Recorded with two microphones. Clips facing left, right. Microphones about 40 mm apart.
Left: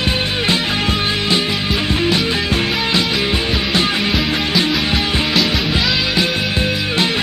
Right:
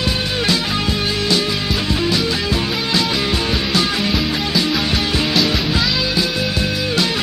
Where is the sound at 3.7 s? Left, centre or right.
Left.